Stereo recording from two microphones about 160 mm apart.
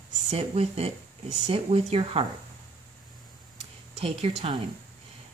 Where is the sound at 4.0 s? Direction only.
40° right (ahead or behind).